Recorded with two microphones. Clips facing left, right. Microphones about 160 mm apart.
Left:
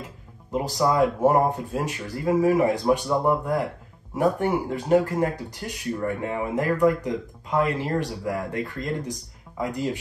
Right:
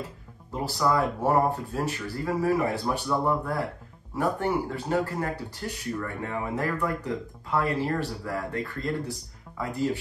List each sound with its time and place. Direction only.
0.5 s speech: 20° left (ahead or behind)